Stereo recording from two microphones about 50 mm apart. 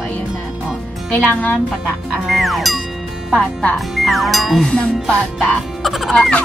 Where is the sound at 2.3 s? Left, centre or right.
Centre.